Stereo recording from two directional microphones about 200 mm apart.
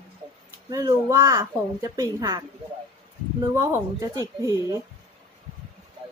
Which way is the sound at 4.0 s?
15° right (ahead or behind).